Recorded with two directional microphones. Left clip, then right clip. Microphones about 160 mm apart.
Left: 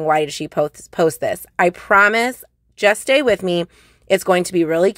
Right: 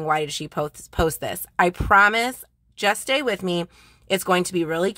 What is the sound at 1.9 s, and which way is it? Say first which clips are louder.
Speech: left 3 dB; 25° left (ahead or behind).